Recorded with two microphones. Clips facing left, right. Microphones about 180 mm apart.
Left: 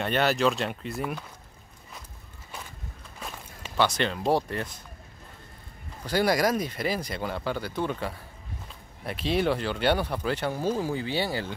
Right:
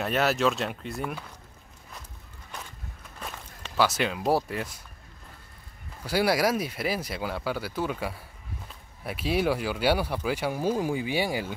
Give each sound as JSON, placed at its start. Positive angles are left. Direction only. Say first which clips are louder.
{"t": 0.0, "sound": "speech", "louder": "left 1 dB", "side_deg": 0}
{"t": 3.2, "sound": "walk", "louder": "even", "side_deg": 0}
{"t": 4.3, "sound": "speech", "louder": "even", "side_deg": -5}
{"t": 6.0, "sound": "speech", "louder": "even", "side_deg": -5}